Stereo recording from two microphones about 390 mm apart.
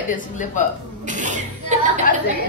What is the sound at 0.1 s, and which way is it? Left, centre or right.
Speech, centre.